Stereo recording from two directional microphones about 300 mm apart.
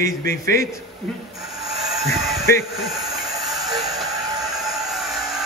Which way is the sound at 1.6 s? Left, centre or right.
Centre.